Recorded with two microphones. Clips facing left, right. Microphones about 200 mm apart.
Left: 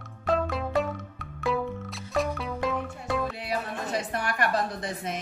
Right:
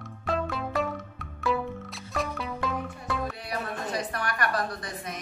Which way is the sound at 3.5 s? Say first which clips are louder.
Left 2 dB; 25° left (ahead or behind).